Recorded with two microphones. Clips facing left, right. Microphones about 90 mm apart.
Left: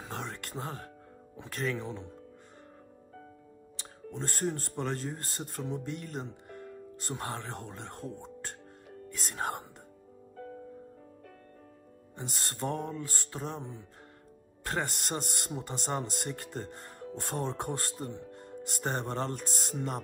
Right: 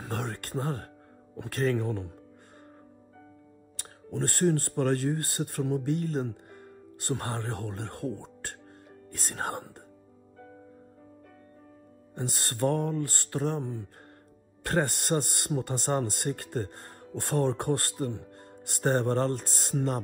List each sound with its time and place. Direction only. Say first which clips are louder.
0.0 s speech: right 4 dB; 55° right (ahead or behind)
4.1 s speech: right 8 dB; 65° right (ahead or behind)
12.2 s speech: right 7 dB; 60° right (ahead or behind)